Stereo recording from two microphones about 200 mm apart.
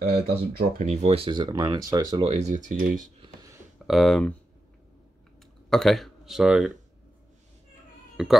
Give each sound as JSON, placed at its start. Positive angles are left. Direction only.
{"t": 0.0, "sound": "speech", "side_deg": -50}
{"t": 0.8, "sound": "speech", "side_deg": -30}
{"t": 2.3, "sound": "speech", "side_deg": -35}
{"t": 3.8, "sound": "speech", "side_deg": 0}
{"t": 5.7, "sound": "speech", "side_deg": 0}
{"t": 8.2, "sound": "speech", "side_deg": 0}